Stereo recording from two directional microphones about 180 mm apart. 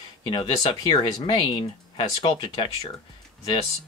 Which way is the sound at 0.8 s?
30° left (ahead or behind).